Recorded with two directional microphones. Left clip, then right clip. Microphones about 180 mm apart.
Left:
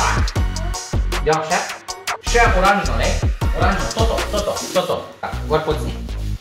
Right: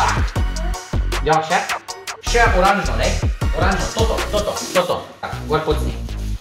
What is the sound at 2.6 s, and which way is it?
Speech, centre (ahead or behind).